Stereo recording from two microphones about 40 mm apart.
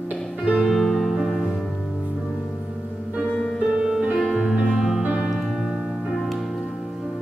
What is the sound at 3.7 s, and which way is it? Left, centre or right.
Music, centre.